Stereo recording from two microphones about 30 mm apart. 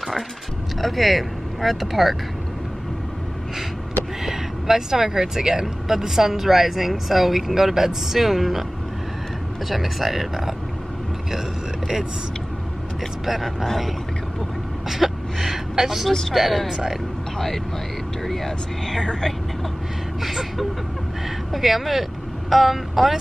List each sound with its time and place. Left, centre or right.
0.7 s speech: centre
4.2 s speech: centre
9.7 s speech: centre
13.2 s speech: centre
15.0 s a sound: centre
15.3 s gasp: centre
16.1 s speech: centre
16.3 s speech: centre
18.2 s speech: centre
20.2 s speech: centre